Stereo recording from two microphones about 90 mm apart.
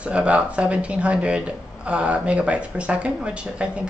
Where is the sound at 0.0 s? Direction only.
15° right (ahead or behind).